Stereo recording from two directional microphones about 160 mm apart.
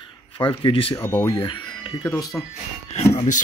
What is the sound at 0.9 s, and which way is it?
Speech, 15° left (ahead or behind).